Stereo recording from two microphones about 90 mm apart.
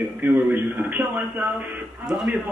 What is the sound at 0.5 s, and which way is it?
Speech, 20° right (ahead or behind).